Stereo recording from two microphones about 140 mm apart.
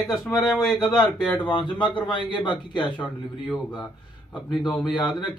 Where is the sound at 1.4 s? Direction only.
35° left (ahead or behind).